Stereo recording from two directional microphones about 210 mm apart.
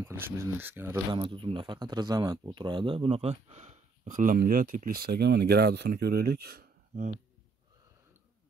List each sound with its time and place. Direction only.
0.0 s speech: 10° right (ahead or behind)
1.1 s speech: 25° right (ahead or behind); by 7.2 s 40° right (ahead or behind)